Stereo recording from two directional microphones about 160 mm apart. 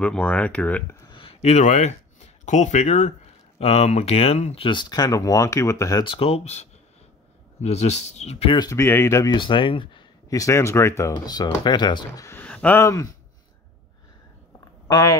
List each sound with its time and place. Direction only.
0.0 s speech: 10° left (ahead or behind)
1.0 s a sound: 35° left (ahead or behind)
3.5 s speech: 40° left (ahead or behind); by 6.0 s 20° left (ahead or behind)
6.0 s speech: 35° left (ahead or behind)
8.6 s speech: 15° left (ahead or behind); by 10.0 s 30° left (ahead or behind)
10.3 s speech: 20° left (ahead or behind)
12.3 s speech: 10° left (ahead or behind)
14.9 s speech: 20° left (ahead or behind)